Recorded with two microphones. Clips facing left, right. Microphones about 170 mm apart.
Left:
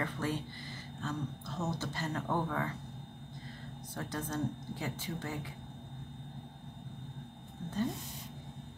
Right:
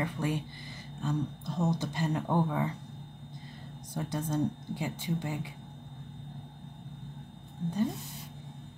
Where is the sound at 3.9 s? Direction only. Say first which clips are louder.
Right 5 dB; 15° right (ahead or behind).